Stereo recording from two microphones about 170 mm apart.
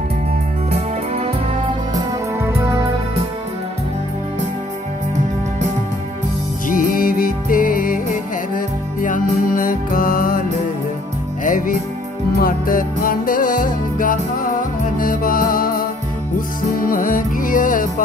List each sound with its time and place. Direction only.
0.7 s music: 40° right (ahead or behind)
2.0 s music: 15° right (ahead or behind)
6.7 s music: 55° left (ahead or behind)
11.4 s music: 50° left (ahead or behind)